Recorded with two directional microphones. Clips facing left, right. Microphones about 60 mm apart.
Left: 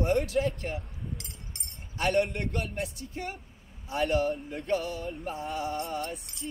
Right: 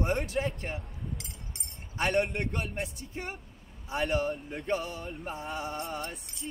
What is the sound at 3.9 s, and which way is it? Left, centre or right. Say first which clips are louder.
Music: left 2 dB; centre.